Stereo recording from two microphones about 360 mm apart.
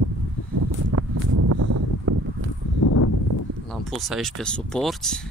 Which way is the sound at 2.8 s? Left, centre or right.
Left.